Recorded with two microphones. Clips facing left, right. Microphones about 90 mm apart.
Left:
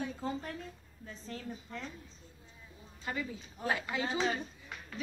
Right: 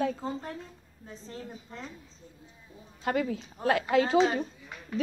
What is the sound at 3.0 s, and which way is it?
A woman's voice, 75° right (ahead or behind).